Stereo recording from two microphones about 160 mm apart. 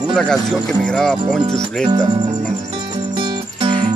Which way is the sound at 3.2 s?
30° right (ahead or behind).